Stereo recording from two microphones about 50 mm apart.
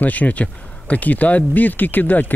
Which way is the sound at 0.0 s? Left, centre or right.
Left.